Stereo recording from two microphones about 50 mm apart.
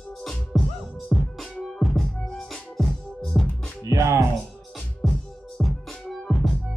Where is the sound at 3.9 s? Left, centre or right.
Right.